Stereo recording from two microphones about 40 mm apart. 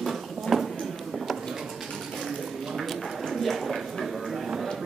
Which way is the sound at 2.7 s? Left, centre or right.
Centre.